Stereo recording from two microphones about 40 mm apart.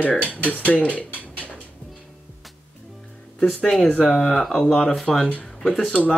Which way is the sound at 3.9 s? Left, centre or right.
Centre.